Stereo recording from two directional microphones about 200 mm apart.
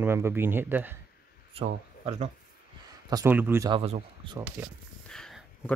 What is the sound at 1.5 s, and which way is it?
Speech, 30° right (ahead or behind).